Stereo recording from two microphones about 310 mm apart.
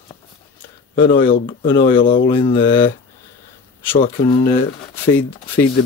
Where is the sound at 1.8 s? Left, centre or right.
Left.